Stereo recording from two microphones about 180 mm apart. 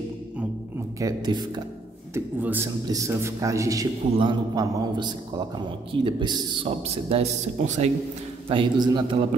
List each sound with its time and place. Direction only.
0.9 s a man's voice: 20° right (ahead or behind)
2.1 s a man's voice: 15° right (ahead or behind); by 7.9 s 40° right (ahead or behind)
8.5 s a man's voice: 25° right (ahead or behind)